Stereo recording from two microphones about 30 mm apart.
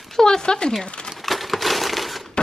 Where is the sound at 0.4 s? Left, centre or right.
Left.